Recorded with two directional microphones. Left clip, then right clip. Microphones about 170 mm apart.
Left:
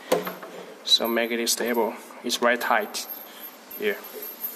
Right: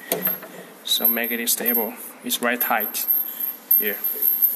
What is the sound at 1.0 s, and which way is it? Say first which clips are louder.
Speech: left 2 dB; 40° left (ahead or behind).